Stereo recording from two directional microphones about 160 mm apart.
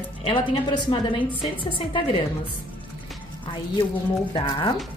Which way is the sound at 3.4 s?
30° left (ahead or behind).